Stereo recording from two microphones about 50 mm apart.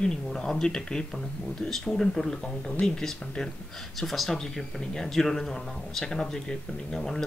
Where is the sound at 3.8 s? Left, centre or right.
Centre.